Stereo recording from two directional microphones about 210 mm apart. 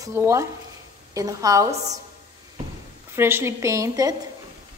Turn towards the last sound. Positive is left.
turn(degrees=-15)  # may be behind; listen again after turning